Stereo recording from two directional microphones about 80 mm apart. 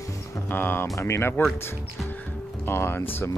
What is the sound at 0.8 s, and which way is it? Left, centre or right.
Speech, left.